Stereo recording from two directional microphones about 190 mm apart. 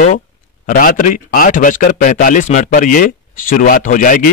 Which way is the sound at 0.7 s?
45° left (ahead or behind).